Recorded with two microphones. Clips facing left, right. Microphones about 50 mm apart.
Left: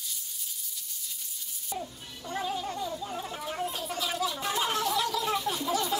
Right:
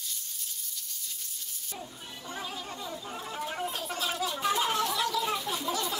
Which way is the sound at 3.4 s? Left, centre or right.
Centre.